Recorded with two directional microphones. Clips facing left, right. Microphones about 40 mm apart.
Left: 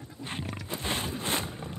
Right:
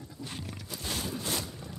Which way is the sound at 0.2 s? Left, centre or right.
Left.